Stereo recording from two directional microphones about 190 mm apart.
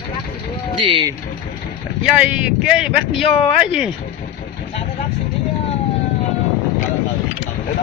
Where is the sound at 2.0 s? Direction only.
5° right (ahead or behind).